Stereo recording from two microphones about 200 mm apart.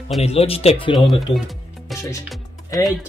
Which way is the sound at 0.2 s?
30° left (ahead or behind).